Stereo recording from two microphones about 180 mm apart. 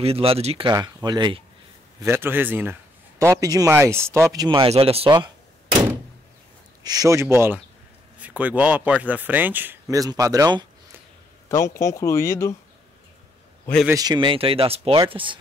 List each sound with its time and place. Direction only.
0.0 s speech: 35° right (ahead or behind)
0.7 s speech: 20° right (ahead or behind)
2.0 s a man's voice: 15° right (ahead or behind)
6.8 s a man's voice: 20° right (ahead or behind)
11.4 s speech: 15° left (ahead or behind)
13.8 s speech: 20° right (ahead or behind)